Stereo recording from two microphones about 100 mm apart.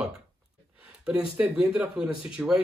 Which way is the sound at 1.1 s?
10° right (ahead or behind).